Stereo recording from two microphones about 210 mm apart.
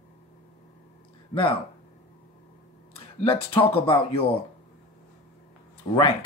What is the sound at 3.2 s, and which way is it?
Speech, 25° left (ahead or behind).